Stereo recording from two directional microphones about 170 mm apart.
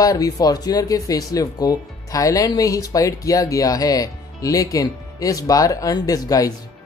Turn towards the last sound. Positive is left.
turn(degrees=20)  # may be behind; listen again after turning